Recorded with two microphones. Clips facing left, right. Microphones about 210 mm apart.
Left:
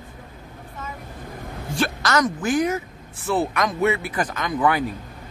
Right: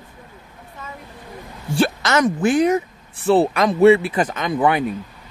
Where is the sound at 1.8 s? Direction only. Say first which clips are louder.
Right 4 dB; 25° right (ahead or behind).